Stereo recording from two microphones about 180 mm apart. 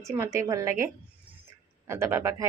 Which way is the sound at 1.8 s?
15° right (ahead or behind).